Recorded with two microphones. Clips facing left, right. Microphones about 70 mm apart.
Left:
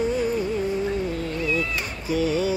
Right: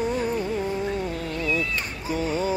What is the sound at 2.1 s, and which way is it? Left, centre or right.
Speech, right.